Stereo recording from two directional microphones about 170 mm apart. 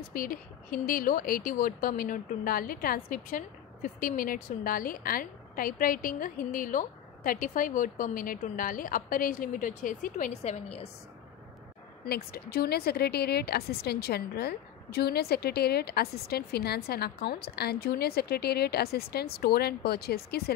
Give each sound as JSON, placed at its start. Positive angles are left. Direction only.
{"t": 0.1, "sound": "speech", "side_deg": 55}
{"t": 12.1, "sound": "a woman's voice", "side_deg": 70}